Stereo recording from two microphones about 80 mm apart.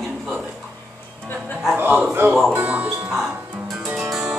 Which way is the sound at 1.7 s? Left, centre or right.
Right.